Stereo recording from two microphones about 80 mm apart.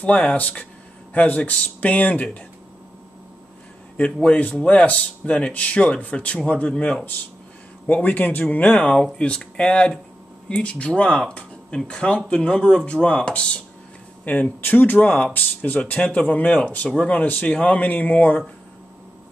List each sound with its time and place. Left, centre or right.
0.0 s speech: centre
3.9 s speech: centre